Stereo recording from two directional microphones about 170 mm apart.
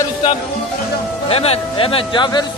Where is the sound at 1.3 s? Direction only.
35° left (ahead or behind).